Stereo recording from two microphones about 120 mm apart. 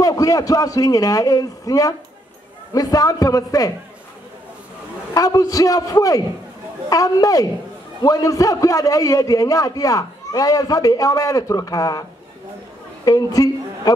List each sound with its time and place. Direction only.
0.0 s a man's voice: 30° left (ahead or behind)
5.1 s a man's voice: 30° left (ahead or behind)